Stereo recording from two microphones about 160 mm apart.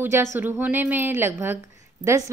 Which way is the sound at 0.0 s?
15° right (ahead or behind).